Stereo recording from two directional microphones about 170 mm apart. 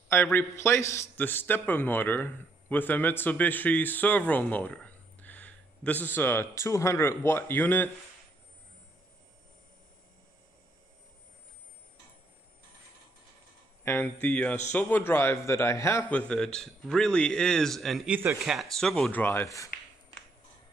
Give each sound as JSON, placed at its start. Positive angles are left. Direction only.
{"t": 0.1, "sound": "a man's voice", "side_deg": 10}
{"t": 13.8, "sound": "a man's voice", "side_deg": 10}
{"t": 19.2, "sound": "a man's voice", "side_deg": 15}